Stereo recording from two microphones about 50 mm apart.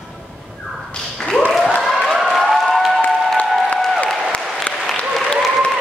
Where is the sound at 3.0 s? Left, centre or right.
Left.